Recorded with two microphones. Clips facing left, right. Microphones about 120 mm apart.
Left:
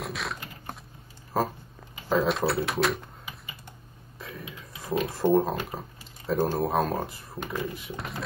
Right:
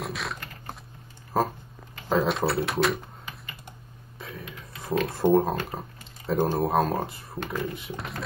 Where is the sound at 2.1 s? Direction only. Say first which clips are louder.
Right 1 dB; centre (ahead or behind).